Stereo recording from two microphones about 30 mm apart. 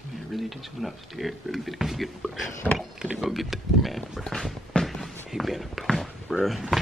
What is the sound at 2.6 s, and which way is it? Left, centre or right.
Speech, left.